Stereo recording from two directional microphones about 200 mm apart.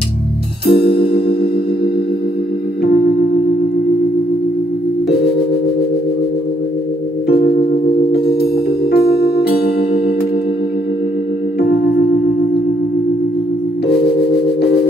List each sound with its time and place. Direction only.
0.7 s music: 50° left (ahead or behind)
7.2 s music: 50° left (ahead or behind)
8.9 s music: 50° left (ahead or behind)